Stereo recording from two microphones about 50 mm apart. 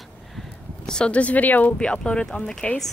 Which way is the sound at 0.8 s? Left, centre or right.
Centre.